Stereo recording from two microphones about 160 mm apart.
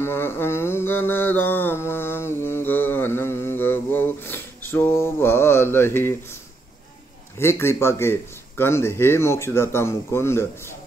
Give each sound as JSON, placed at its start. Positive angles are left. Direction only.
{"t": 0.0, "sound": "mantra", "side_deg": 15}
{"t": 7.3, "sound": "speech", "side_deg": 15}